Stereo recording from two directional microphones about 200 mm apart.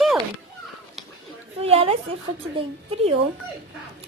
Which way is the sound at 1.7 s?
30° right (ahead or behind).